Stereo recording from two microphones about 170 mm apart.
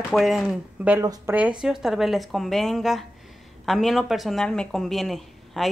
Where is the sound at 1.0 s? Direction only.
20° right (ahead or behind).